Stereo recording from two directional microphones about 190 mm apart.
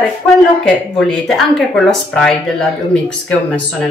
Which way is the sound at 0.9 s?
Centre (ahead or behind).